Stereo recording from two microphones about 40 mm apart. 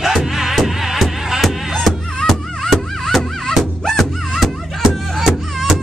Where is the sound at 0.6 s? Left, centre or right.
Centre.